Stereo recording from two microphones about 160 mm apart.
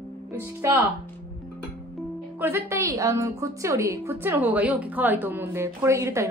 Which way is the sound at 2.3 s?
15° right (ahead or behind).